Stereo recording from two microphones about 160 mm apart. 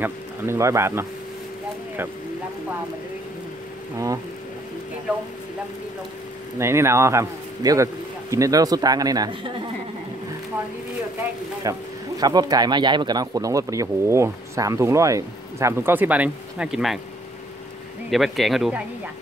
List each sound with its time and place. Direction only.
0.0 s speech: 15° right (ahead or behind)
6.6 s speech: 15° right (ahead or behind)
11.6 s speech: 20° right (ahead or behind); by 17.0 s 5° right (ahead or behind)
18.1 s speech: centre (ahead or behind)